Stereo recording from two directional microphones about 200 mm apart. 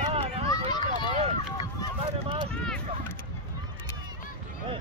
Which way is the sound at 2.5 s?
5° left (ahead or behind).